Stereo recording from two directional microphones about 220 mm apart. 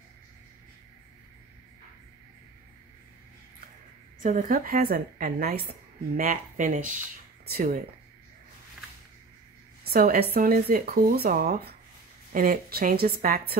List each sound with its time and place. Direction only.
4.2 s a woman's voice: 35° right (ahead or behind)
9.8 s a woman's voice: 45° right (ahead or behind)